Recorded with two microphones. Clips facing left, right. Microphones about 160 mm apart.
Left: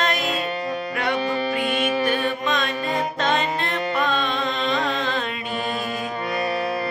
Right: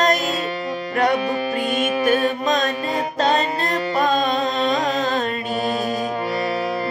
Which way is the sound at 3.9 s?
40° right (ahead or behind).